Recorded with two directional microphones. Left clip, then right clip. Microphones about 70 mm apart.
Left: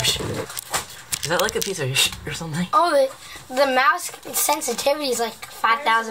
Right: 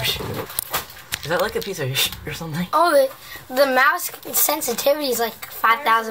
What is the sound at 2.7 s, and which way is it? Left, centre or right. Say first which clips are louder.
Speech: right 1 dB; right.